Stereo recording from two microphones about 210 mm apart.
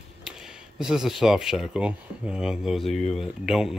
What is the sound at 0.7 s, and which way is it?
Speech, 5° right (ahead or behind).